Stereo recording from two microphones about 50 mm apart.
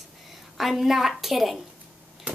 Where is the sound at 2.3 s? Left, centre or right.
Right.